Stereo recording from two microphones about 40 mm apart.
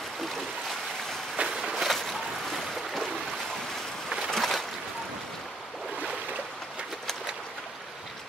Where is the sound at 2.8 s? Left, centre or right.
Centre.